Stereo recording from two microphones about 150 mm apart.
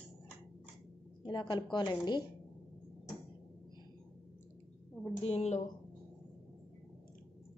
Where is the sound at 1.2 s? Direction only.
30° left (ahead or behind).